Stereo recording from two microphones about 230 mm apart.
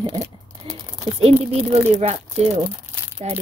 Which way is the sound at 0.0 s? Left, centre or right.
Centre.